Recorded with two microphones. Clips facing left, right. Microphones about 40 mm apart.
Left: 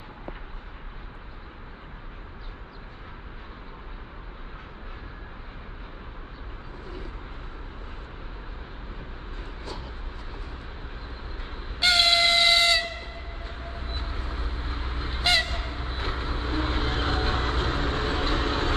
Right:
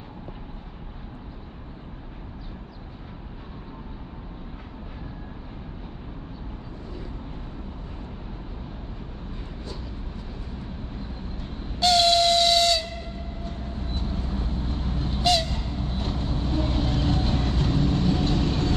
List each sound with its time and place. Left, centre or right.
11.3 s train: left
13.4 s vehicle: left
15.4 s vehicle: left